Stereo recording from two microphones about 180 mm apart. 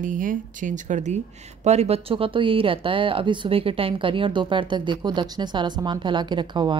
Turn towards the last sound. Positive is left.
turn(degrees=-25)  # may be behind; listen again after turning